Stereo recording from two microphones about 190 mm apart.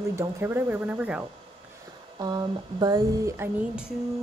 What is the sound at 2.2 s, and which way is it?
Speech, 20° right (ahead or behind).